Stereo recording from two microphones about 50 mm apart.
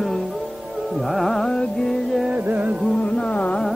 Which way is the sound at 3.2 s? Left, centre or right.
Left.